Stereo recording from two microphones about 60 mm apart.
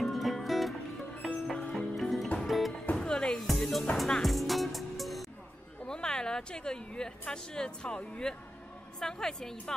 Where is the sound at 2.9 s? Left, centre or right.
Centre.